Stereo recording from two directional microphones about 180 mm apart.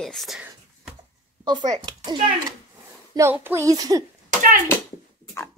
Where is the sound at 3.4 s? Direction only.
15° right (ahead or behind).